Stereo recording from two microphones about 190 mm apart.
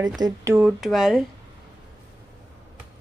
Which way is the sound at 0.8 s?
Centre (ahead or behind).